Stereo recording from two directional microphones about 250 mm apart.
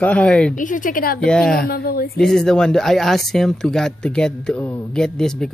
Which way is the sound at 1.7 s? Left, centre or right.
Left.